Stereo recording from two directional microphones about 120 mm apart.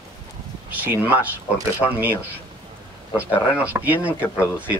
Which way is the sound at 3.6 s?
15° right (ahead or behind).